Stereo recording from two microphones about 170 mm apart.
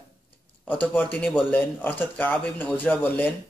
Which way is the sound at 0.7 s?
10° left (ahead or behind).